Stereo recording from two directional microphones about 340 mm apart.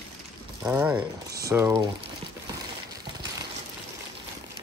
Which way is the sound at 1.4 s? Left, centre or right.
Centre.